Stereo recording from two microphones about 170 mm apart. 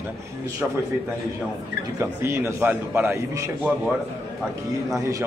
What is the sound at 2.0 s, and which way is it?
A man's voice, 15° right (ahead or behind).